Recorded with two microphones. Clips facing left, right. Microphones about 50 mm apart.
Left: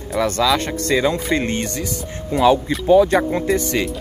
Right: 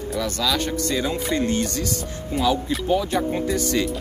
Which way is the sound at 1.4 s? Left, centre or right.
Left.